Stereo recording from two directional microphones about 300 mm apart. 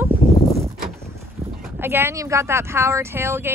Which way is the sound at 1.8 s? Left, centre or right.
Centre.